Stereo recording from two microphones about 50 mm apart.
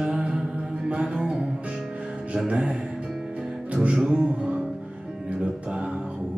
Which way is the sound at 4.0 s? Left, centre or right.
Centre.